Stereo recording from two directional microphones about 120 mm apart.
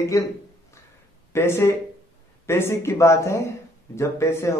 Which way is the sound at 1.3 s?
20° left (ahead or behind).